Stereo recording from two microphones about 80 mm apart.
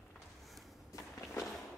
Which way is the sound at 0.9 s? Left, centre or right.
Left.